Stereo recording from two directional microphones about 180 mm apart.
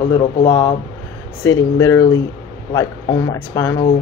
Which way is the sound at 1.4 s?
15° left (ahead or behind).